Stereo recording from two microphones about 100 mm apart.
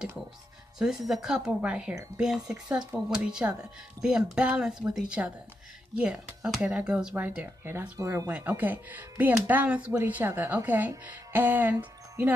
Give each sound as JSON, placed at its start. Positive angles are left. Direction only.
{"t": 0.7, "sound": "speech", "side_deg": -5}
{"t": 8.0, "sound": "speech", "side_deg": -35}
{"t": 8.3, "sound": "speech", "side_deg": -15}